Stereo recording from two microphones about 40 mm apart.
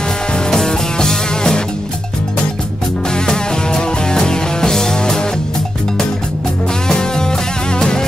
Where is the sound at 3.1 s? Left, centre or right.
Centre.